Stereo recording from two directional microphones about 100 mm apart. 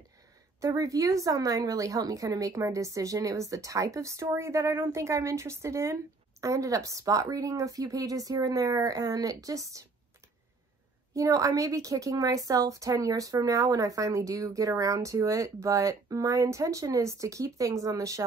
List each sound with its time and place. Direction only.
0.6 s a woman's voice: 35° right (ahead or behind)
11.1 s a woman's voice: 35° right (ahead or behind)